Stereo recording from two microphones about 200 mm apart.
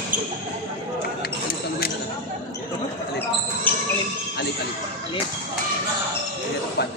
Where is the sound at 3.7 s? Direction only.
10° left (ahead or behind).